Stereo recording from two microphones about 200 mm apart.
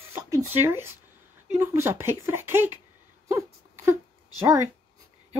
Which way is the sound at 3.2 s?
15° right (ahead or behind).